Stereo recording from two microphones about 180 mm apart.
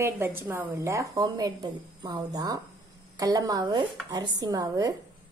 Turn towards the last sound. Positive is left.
turn(degrees=-20)  # may be behind; listen again after turning